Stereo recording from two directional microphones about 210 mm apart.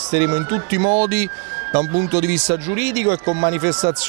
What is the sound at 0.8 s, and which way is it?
Speech, 35° right (ahead or behind).